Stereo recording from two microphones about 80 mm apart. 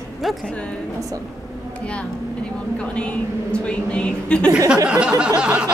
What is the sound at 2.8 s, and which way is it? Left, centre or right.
A woman's voice, centre.